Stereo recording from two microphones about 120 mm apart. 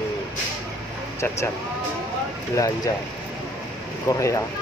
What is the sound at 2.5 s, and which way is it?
Speech, 30° left (ahead or behind).